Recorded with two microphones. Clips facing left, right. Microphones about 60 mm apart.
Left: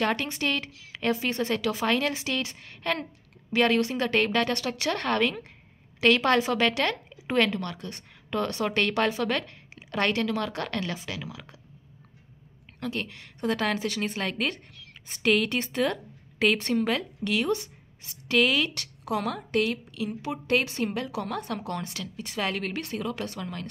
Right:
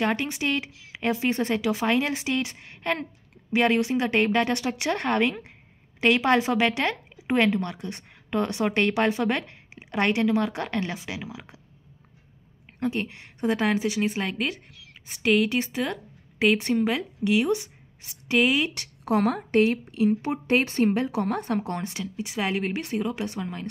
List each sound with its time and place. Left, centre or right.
0.0 s a woman's voice: centre
12.8 s a woman's voice: right
19.0 s a woman's voice: right
22.0 s a woman's voice: centre